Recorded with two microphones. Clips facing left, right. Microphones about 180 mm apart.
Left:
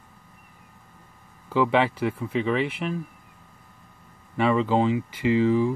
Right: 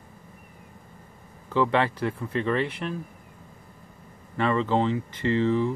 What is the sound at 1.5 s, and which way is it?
Speech, 10° left (ahead or behind).